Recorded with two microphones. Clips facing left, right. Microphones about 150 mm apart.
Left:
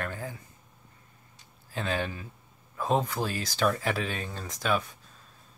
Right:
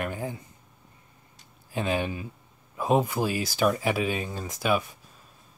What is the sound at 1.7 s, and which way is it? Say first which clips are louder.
Speech: right 4 dB; 15° right (ahead or behind).